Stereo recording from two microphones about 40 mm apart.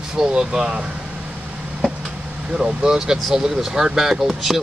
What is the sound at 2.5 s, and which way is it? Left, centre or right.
Speech, centre.